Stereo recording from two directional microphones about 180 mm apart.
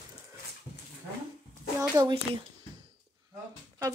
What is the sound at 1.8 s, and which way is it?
Speech, 20° right (ahead or behind).